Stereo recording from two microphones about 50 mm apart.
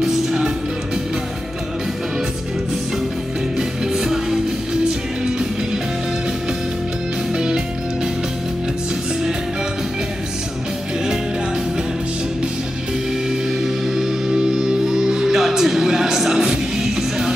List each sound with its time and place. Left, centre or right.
0.0 s music: centre
3.5 s music: centre
7.3 s music: centre
13.9 s music: centre